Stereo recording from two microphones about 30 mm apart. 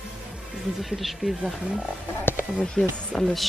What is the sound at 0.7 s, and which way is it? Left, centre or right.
Speech, centre.